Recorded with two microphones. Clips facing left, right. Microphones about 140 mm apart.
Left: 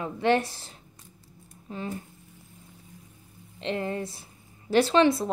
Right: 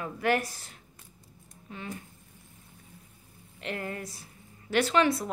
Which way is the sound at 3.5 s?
25° left (ahead or behind).